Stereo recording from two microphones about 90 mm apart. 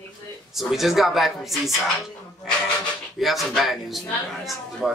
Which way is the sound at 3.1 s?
Centre (ahead or behind).